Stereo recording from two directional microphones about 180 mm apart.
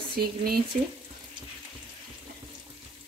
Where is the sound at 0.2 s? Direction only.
55° right (ahead or behind).